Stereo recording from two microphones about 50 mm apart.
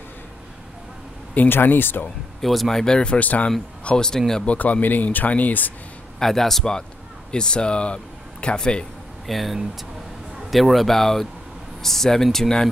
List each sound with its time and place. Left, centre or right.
1.5 s speech: left
2.4 s speech: centre
2.8 s speech: centre
4.5 s speech: left
6.1 s speech: centre
9.3 s speech: centre